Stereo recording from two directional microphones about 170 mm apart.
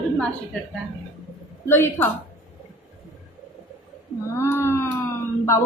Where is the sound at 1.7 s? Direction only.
15° left (ahead or behind).